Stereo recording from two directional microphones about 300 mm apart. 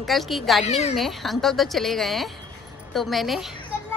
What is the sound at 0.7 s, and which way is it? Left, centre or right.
Speech, left.